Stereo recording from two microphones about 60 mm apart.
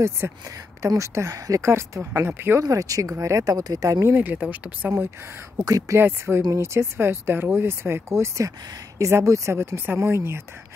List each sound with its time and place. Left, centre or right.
0.8 s speech: right
1.7 s speech: right
2.6 s speech: right
4.1 s speech: right
5.7 s speech: right
5.9 s speech: right
8.5 s speech: right
9.1 s speech: right